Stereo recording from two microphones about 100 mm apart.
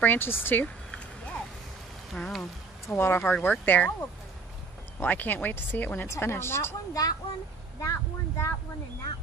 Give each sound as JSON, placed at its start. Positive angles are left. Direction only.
{"t": 0.0, "sound": "a sound", "side_deg": 20}
{"t": 2.1, "sound": "speech", "side_deg": 5}
{"t": 2.9, "sound": "speech", "side_deg": 25}